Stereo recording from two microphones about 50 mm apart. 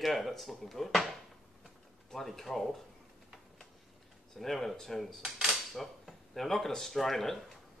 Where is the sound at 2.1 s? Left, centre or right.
Centre.